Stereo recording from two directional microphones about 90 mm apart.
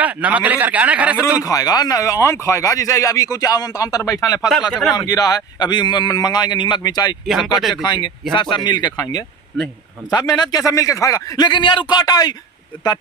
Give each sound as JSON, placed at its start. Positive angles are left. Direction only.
{"t": 0.0, "sound": "a man's voice", "side_deg": -15}
{"t": 1.4, "sound": "speech", "side_deg": 45}
{"t": 4.5, "sound": "speech", "side_deg": 0}
{"t": 4.9, "sound": "speech", "side_deg": 45}
{"t": 10.0, "sound": "speech", "side_deg": 50}